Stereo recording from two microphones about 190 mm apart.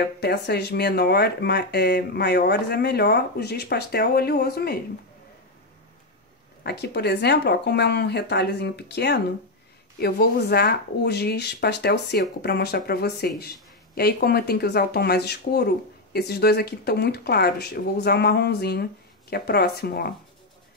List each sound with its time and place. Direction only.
0.2 s speech: 60° left (ahead or behind)
6.6 s speech: 60° left (ahead or behind)